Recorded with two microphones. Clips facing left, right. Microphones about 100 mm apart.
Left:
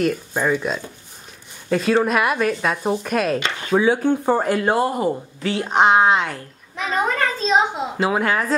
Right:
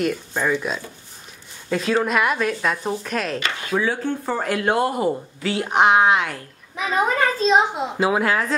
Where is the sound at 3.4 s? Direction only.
20° left (ahead or behind).